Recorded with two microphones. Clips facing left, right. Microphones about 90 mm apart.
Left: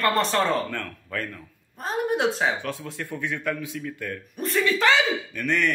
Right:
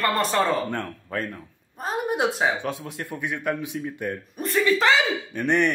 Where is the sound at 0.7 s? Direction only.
25° right (ahead or behind).